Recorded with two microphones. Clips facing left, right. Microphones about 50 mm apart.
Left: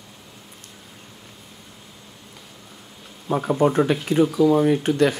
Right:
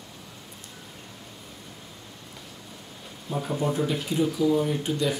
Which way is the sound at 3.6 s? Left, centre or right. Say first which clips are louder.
Left 8 dB; left.